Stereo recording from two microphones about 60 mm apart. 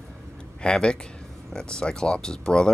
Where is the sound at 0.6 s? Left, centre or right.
Centre.